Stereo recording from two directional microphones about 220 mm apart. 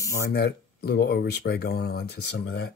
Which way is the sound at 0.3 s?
45° left (ahead or behind).